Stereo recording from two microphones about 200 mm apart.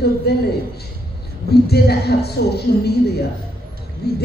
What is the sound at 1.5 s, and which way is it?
Speech, 55° left (ahead or behind).